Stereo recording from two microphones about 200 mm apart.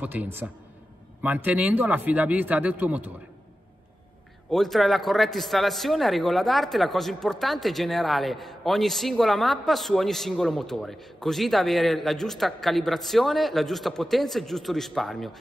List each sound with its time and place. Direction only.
0.0 s speech: 10° right (ahead or behind)
4.5 s a man's voice: centre (ahead or behind)